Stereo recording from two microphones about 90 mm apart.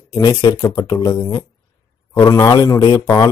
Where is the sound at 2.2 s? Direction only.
45° left (ahead or behind).